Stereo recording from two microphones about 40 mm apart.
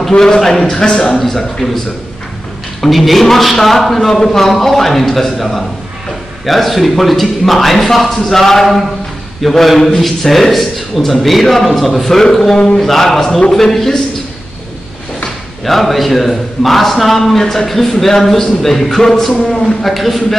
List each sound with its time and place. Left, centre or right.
0.2 s a man's voice: centre
1.2 s a man's voice: centre
2.8 s a man's voice: centre
12.5 s speech: left
12.8 s a man's voice: centre
15.6 s a man's voice: centre